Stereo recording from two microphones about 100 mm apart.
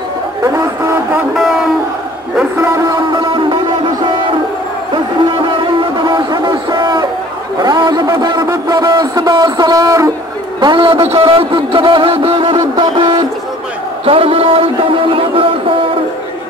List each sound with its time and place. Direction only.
3.1 s music: 55° right (ahead or behind)
4.9 s a sound: 55° right (ahead or behind)
8.6 s speech: 40° right (ahead or behind)
10.6 s speech: 55° right (ahead or behind)
11.1 s speech: 70° right (ahead or behind)
12.7 s a sound: 60° right (ahead or behind)
14.0 s speech: 65° right (ahead or behind)